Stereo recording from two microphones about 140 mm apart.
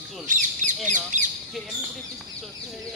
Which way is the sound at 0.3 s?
65° right (ahead or behind).